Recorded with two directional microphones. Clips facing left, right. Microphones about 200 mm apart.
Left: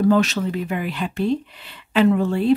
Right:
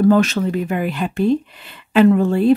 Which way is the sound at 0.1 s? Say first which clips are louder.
Right 3 dB; 50° right (ahead or behind).